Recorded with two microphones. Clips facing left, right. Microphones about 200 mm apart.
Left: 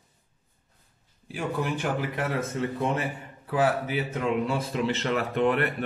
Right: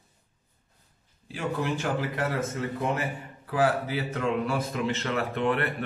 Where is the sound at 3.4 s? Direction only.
20° left (ahead or behind).